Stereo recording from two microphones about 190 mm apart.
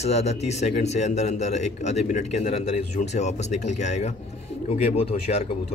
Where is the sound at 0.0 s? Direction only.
35° left (ahead or behind).